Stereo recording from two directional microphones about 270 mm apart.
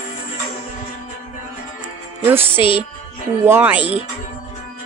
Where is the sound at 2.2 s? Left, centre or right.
Centre.